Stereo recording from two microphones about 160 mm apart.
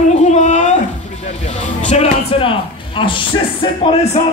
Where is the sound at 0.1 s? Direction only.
45° left (ahead or behind).